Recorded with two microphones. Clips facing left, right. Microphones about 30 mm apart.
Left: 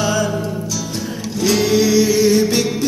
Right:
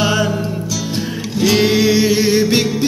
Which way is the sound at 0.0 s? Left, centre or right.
Right.